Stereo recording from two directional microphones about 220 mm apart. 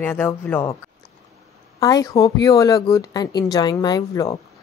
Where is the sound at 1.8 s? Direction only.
15° left (ahead or behind).